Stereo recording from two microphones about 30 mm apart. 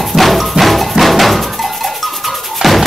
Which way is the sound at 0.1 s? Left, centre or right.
Centre.